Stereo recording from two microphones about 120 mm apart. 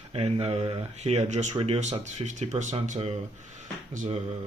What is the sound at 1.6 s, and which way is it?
Speech, 60° right (ahead or behind).